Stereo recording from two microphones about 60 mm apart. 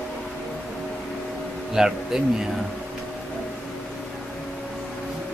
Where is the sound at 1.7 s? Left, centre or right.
Centre.